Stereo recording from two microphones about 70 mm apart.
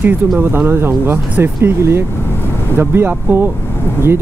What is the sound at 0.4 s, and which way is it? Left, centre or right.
Speech, right.